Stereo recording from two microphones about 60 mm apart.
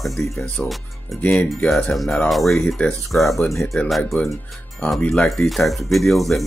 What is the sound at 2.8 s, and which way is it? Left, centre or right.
Speech, left.